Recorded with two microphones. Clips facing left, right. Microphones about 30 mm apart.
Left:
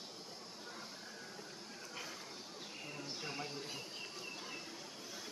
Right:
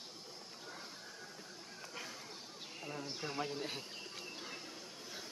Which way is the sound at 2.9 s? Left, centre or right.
Centre.